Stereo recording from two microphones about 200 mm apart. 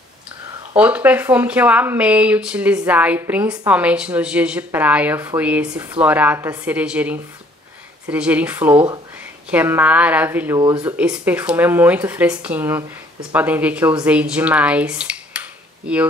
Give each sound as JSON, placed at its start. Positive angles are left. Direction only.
{"t": 0.7, "sound": "a woman's voice", "side_deg": -5}
{"t": 10.6, "sound": "speech", "side_deg": -20}
{"t": 11.0, "sound": "a woman's voice", "side_deg": -5}